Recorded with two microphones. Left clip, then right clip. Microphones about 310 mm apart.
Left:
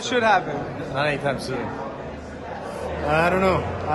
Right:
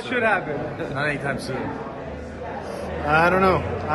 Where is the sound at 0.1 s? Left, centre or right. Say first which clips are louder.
Left 2 dB; centre.